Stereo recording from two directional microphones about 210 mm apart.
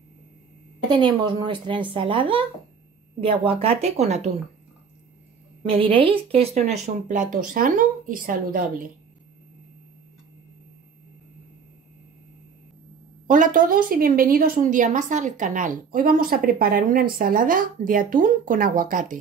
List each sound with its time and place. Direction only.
0.8 s speech: 20° right (ahead or behind)
5.7 s a woman's voice: 25° right (ahead or behind); by 8.8 s 40° right (ahead or behind)
13.3 s a woman's voice: 40° right (ahead or behind)